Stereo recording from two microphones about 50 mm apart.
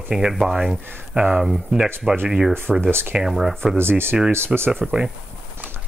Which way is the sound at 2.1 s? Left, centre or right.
Right.